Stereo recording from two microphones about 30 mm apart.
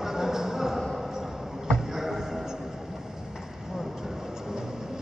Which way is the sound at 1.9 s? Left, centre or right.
Centre.